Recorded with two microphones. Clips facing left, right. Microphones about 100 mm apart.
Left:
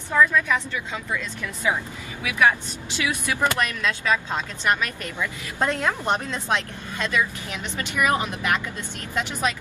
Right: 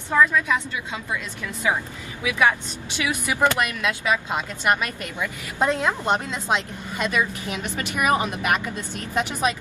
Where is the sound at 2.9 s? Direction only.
20° right (ahead or behind).